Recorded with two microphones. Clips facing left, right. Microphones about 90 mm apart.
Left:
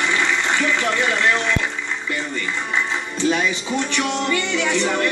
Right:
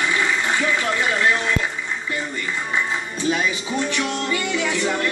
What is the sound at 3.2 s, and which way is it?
Speech, 25° left (ahead or behind).